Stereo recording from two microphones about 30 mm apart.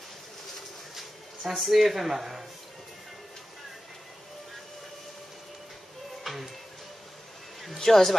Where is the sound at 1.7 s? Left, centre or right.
Centre.